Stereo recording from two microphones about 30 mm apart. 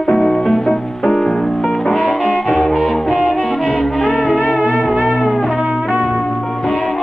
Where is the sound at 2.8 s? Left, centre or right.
Centre.